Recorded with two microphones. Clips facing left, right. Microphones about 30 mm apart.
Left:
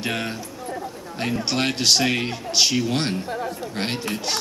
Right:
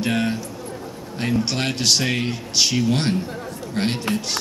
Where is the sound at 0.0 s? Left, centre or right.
Centre.